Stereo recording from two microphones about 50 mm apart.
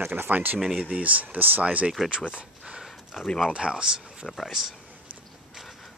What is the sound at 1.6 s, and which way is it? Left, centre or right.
Speech, right.